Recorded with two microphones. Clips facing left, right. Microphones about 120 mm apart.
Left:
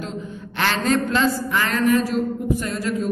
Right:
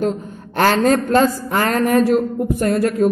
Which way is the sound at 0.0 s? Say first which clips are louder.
Right 9 dB; 45° right (ahead or behind).